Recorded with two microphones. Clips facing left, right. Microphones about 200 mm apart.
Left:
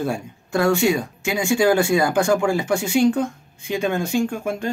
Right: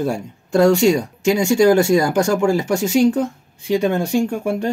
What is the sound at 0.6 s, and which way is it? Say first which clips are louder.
Speech: right 5 dB; 40° right (ahead or behind).